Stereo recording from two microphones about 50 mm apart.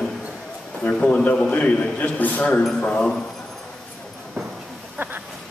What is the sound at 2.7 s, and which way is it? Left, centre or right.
Speech, left.